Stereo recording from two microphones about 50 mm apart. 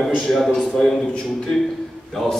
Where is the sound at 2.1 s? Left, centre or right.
Centre.